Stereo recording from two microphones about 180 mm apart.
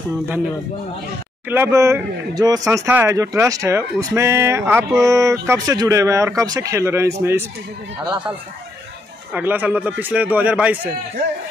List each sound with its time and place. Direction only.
1.5 s speech: 15° right (ahead or behind)
9.3 s speech: 10° right (ahead or behind)